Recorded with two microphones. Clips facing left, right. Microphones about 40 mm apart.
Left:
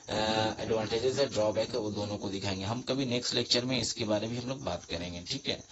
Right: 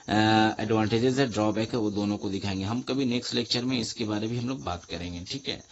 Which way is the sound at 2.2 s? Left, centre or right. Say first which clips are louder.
Right 4 dB; centre.